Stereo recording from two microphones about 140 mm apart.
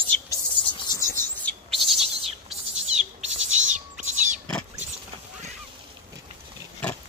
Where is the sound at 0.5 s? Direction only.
35° left (ahead or behind).